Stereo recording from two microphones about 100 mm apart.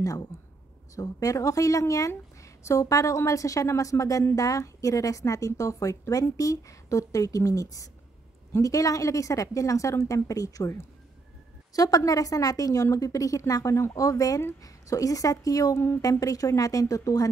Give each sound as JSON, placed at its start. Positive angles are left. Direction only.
{"t": 0.0, "sound": "a woman's voice", "side_deg": 35}